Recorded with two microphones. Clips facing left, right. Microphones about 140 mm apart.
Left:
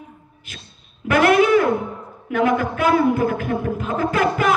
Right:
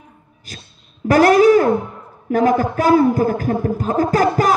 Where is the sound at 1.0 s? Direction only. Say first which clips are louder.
Right 4 dB; 40° right (ahead or behind).